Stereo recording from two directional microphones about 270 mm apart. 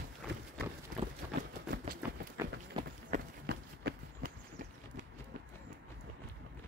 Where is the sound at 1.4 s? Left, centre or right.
Right.